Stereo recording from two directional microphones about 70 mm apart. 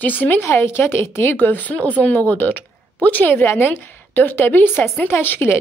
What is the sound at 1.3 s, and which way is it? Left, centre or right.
A woman's voice, left.